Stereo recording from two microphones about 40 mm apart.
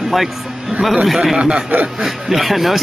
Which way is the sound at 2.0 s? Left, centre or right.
Centre.